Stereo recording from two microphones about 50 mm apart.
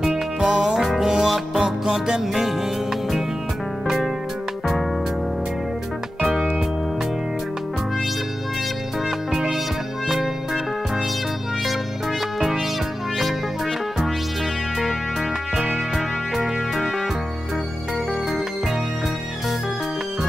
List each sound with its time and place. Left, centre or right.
0.4 s music: centre
0.7 s music: centre
3.8 s music: centre
10.0 s music: centre
16.3 s music: centre